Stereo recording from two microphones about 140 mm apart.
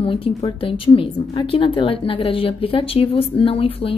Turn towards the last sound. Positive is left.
turn(degrees=40)  # may be behind; listen again after turning